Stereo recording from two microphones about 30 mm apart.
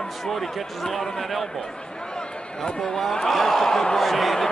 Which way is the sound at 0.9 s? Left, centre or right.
Centre.